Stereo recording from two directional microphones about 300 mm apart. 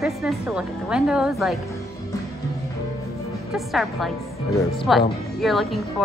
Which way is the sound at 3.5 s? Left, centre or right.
Centre.